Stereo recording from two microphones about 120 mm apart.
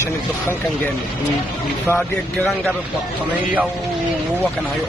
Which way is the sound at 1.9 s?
15° left (ahead or behind).